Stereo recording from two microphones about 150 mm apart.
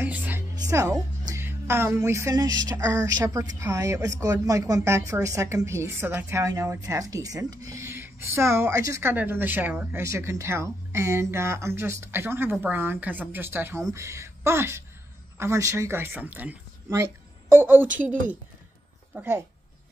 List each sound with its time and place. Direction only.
0.0 s music: 10° right (ahead or behind)
0.6 s a woman's voice: 20° right (ahead or behind)
1.2 s music: 15° right (ahead or behind)
15.3 s speech: 20° right (ahead or behind)
19.1 s music: 15° right (ahead or behind)